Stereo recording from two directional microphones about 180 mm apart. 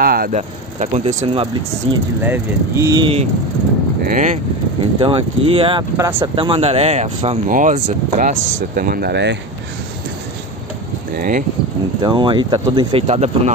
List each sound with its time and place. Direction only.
0.0 s a sound: 55° right (ahead or behind)
0.4 s speech: 40° right (ahead or behind)
2.2 s speech: 15° right (ahead or behind)
4.0 s speech: 45° right (ahead or behind)
4.9 s speech: 30° right (ahead or behind)
5.9 s speech: 15° right (ahead or behind)
6.3 s speech: 30° right (ahead or behind); by 9.4 s 70° right (ahead or behind)
11.1 s speech: 50° right (ahead or behind)
12.0 s speech: 25° right (ahead or behind)